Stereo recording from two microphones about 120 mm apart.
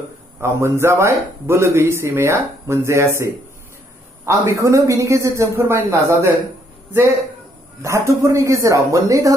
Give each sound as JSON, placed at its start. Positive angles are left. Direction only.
{"t": 0.4, "sound": "a man's voice", "side_deg": -20}
{"t": 4.3, "sound": "a man's voice", "side_deg": -25}
{"t": 7.8, "sound": "a man's voice", "side_deg": -25}